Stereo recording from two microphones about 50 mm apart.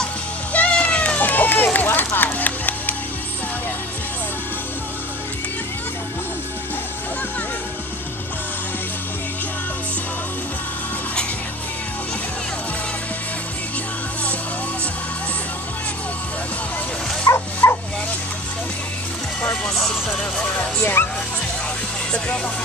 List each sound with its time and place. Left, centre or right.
0.5 s cat: left
0.7 s run: left
2.0 s music: left
17.6 s bow-wow: left
19.7 s music: centre
20.1 s vehicle: left
20.8 s music: left